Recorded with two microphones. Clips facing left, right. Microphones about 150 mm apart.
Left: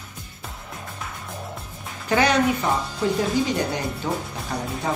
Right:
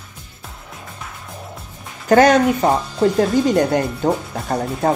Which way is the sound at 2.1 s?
45° right (ahead or behind).